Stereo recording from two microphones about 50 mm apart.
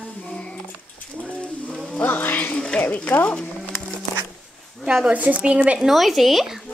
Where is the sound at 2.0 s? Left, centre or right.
Left.